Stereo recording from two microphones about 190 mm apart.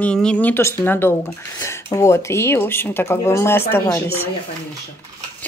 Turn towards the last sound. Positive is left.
turn(degrees=10)  # may be behind; listen again after turning